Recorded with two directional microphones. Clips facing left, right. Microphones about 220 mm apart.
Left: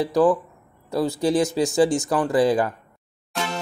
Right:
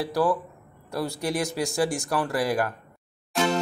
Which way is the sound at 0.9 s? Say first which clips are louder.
Left 7 dB; 20° left (ahead or behind).